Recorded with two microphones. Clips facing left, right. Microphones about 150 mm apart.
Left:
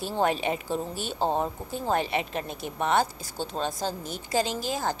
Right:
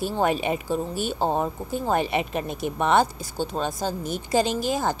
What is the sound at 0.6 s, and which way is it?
Speech, 50° right (ahead or behind).